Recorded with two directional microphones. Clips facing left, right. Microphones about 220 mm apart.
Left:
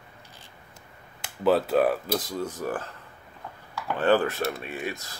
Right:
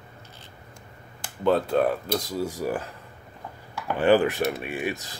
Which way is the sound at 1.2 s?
5° left (ahead or behind).